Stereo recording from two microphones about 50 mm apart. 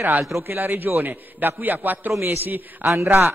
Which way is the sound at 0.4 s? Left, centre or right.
Right.